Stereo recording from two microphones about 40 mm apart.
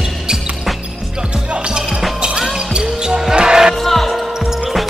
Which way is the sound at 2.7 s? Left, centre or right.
Centre.